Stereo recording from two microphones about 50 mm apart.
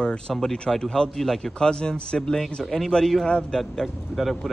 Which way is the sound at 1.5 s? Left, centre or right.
Centre.